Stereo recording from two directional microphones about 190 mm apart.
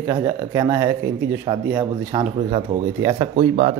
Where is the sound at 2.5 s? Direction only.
30° right (ahead or behind).